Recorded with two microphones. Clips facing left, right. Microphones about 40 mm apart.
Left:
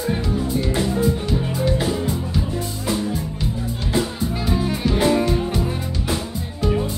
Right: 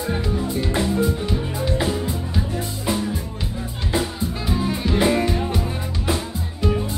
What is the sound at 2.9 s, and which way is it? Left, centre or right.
Music, right.